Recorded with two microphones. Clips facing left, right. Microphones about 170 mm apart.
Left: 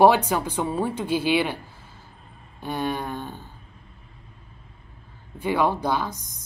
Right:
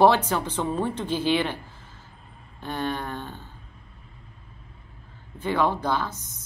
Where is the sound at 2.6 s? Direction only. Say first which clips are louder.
Left 2 dB; 10° left (ahead or behind).